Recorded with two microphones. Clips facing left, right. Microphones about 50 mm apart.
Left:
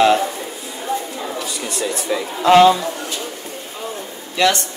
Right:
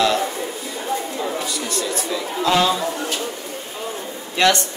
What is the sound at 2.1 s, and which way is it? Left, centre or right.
Speech, left.